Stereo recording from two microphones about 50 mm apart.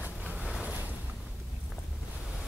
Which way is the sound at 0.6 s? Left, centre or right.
Right.